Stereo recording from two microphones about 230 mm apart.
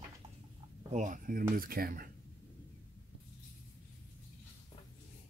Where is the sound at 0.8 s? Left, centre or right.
Right.